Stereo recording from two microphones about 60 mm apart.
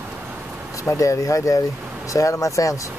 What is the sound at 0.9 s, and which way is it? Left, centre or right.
Speech, left.